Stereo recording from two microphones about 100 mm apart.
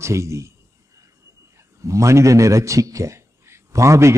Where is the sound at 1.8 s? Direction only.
30° right (ahead or behind).